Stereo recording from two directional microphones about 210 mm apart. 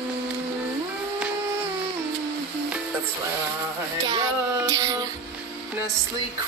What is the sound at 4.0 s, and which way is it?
Music, 15° right (ahead or behind).